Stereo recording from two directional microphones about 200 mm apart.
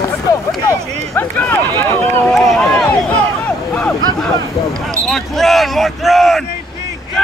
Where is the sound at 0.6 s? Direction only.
10° left (ahead or behind).